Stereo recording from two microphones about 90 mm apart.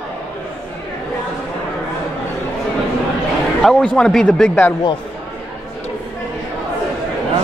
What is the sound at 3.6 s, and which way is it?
Speech, 5° left (ahead or behind).